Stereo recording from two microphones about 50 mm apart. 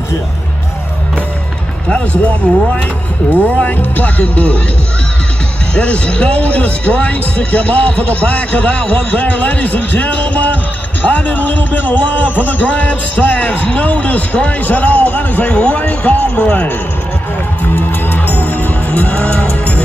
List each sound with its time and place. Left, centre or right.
1.9 s a man's voice: left
5.8 s a man's voice: left
17.7 s music: left